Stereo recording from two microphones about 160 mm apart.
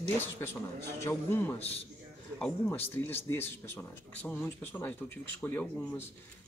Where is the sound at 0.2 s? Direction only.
15° left (ahead or behind).